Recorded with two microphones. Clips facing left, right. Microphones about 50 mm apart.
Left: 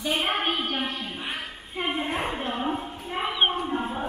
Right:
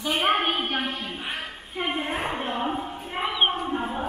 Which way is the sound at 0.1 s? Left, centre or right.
Right.